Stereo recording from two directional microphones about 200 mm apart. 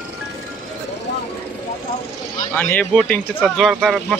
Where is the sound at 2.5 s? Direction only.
10° left (ahead or behind).